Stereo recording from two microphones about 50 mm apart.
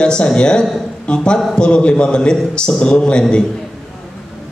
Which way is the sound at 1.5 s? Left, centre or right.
Left.